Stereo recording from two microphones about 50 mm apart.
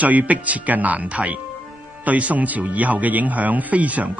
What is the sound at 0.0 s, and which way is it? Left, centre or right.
Speech, right.